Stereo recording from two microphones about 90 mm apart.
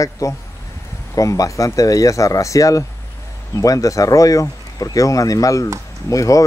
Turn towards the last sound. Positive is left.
turn(degrees=40)  # may be behind; listen again after turning